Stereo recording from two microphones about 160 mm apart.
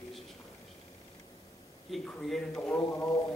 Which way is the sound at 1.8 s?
Centre (ahead or behind).